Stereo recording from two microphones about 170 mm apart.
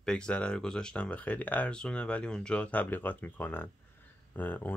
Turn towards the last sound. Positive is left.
turn(degrees=10)  # may be behind; listen again after turning